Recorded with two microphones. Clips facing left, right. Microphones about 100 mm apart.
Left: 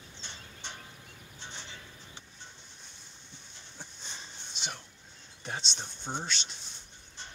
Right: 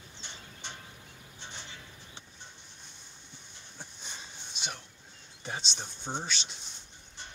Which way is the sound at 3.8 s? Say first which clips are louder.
Even; 10° right (ahead or behind).